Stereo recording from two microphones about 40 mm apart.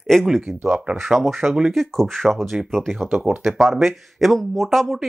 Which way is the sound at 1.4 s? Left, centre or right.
Right.